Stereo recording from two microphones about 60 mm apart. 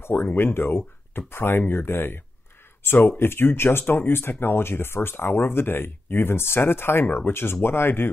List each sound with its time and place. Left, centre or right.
0.0 s speech: left